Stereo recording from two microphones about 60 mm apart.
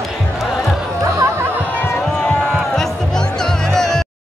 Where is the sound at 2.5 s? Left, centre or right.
Centre.